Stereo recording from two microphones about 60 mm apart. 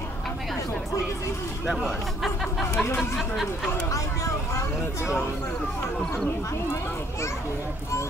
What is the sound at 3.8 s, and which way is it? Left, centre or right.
Speech, left.